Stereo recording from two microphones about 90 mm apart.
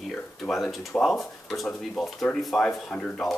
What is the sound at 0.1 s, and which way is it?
Speech, 5° left (ahead or behind).